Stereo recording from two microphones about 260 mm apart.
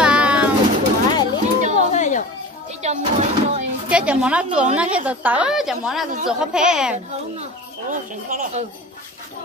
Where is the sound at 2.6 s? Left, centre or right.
Right.